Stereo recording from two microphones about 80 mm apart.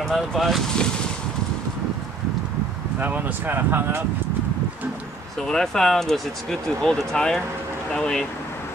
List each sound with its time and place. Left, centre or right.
0.0 s speech: centre
3.0 s speech: right
5.4 s speech: centre